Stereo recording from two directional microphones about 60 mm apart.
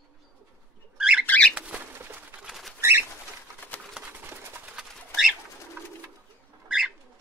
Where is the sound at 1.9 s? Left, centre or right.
Right.